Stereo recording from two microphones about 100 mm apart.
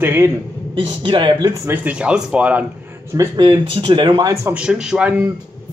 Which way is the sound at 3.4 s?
55° right (ahead or behind).